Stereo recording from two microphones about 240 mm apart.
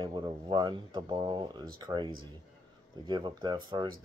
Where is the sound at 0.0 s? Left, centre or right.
Centre.